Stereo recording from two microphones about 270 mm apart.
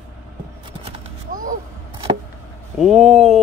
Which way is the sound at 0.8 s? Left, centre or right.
Right.